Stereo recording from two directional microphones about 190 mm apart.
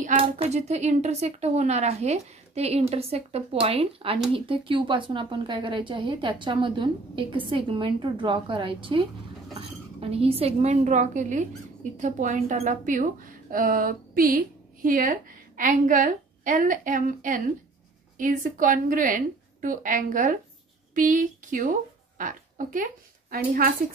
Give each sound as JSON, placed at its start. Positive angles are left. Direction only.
{"t": 0.2, "sound": "a woman's voice", "side_deg": -35}